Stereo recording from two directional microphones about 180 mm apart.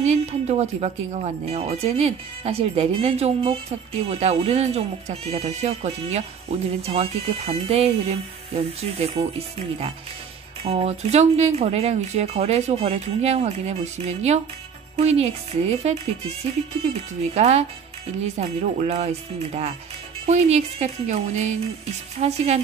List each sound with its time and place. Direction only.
0.0 s speech: 40° right (ahead or behind)
17.3 s speech: 35° right (ahead or behind)